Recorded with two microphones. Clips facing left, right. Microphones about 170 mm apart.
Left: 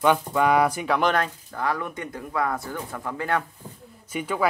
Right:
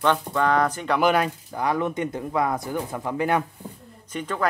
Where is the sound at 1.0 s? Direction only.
10° right (ahead or behind).